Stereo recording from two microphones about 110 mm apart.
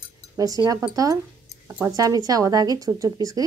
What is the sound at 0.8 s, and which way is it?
Speech, 30° right (ahead or behind).